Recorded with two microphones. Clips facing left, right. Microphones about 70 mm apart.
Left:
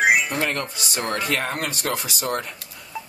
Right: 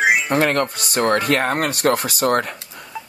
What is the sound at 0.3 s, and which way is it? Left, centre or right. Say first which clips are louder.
Speech: right 7 dB; right.